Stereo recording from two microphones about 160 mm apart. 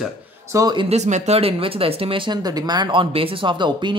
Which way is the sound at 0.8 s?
45° right (ahead or behind).